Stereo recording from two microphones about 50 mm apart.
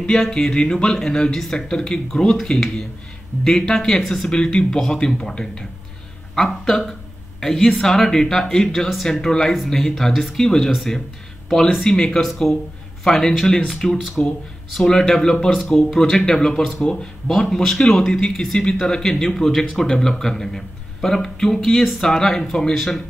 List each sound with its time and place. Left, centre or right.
0.0 s a sound: centre
0.3 s speech: centre
4.3 s speech: centre